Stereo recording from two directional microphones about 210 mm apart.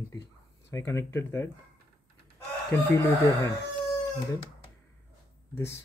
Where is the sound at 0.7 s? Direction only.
15° left (ahead or behind).